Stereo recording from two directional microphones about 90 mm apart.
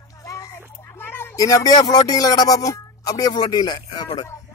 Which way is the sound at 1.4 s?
40° left (ahead or behind).